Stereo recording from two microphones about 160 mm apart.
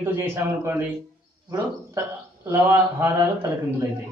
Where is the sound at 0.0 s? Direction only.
15° right (ahead or behind).